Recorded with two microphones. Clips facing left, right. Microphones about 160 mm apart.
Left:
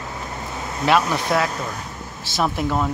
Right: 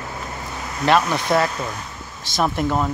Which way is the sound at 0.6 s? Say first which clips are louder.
Left 1 dB; 25° left (ahead or behind).